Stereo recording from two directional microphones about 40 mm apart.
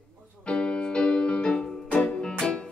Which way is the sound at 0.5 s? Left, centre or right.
Left.